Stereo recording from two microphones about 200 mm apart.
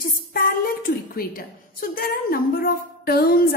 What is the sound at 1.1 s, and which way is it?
A woman's voice, 45° left (ahead or behind).